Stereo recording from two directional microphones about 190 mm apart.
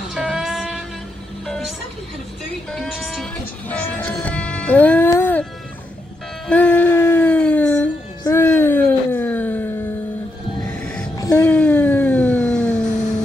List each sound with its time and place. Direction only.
0.1 s music: centre (ahead or behind)
2.7 s music: 5° left (ahead or behind)
6.9 s a sound: 15° left (ahead or behind)
10.6 s music: 5° left (ahead or behind)
11.1 s music: 20° left (ahead or behind)
11.4 s a sound: 5° left (ahead or behind)